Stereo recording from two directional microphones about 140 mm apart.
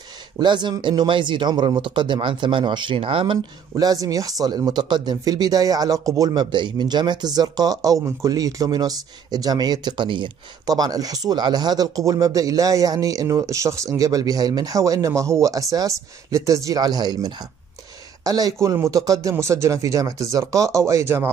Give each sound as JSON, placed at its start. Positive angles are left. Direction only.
{"t": 0.4, "sound": "speech", "side_deg": -35}
{"t": 3.7, "sound": "speech", "side_deg": -25}